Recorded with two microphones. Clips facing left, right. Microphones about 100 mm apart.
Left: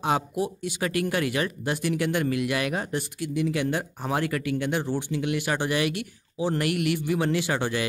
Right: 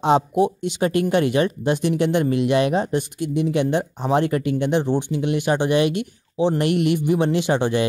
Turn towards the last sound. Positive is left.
turn(degrees=-25)  # may be behind; listen again after turning